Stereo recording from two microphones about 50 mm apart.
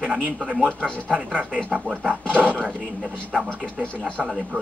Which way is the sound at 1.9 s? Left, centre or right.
Left.